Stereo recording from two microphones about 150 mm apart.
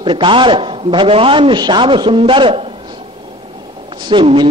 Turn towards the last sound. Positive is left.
turn(degrees=-35)  # may be behind; listen again after turning